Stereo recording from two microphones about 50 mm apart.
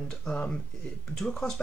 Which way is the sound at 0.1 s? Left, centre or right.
Centre.